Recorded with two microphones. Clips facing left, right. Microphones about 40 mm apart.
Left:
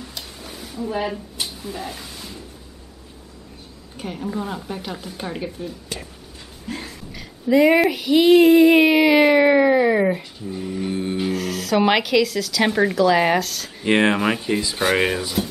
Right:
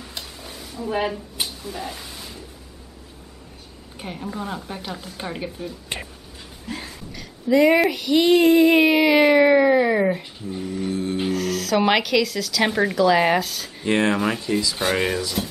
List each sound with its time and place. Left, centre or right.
0.2 s a sound: centre
0.8 s speech: centre
1.6 s a sound: centre
3.9 s female singing: centre
5.9 s speech: right
7.2 s female singing: centre
10.6 s a sound: centre
10.9 s music: left
11.2 s female singing: centre
13.8 s speech: left
14.2 s speech: centre